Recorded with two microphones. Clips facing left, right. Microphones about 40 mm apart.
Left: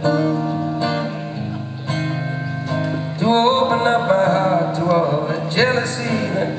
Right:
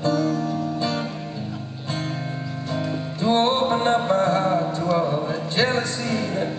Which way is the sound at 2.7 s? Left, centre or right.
Centre.